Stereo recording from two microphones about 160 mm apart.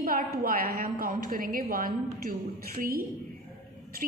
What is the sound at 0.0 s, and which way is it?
A woman's voice, 60° right (ahead or behind).